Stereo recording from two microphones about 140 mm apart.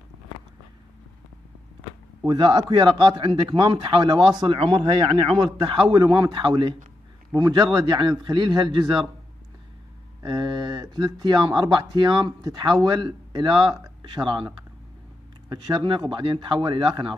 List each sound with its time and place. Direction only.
2.2 s speech: 35° right (ahead or behind)
10.2 s speech: 35° right (ahead or behind)
15.5 s speech: 35° right (ahead or behind)